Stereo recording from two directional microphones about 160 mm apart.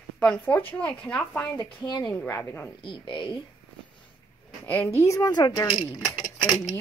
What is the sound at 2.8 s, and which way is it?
Speech, 30° left (ahead or behind).